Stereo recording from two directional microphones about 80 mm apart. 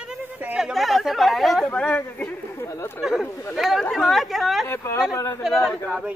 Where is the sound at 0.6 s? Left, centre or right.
Centre.